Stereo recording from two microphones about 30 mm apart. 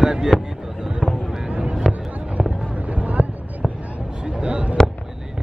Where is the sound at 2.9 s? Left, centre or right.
Right.